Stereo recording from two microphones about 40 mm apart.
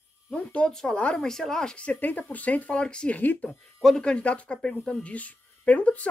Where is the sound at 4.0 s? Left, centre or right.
Left.